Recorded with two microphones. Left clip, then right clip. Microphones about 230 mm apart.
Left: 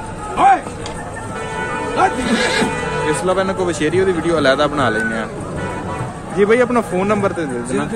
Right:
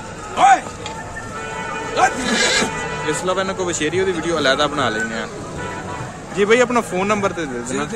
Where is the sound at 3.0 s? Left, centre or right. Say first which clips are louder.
Left 3 dB; centre.